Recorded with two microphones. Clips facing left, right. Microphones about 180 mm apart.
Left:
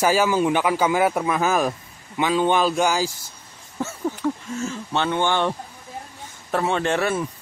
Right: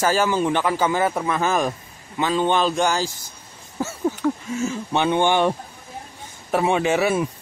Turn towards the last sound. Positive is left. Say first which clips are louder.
# right 3 dB
turn(degrees=-10)  # may be behind; listen again after turning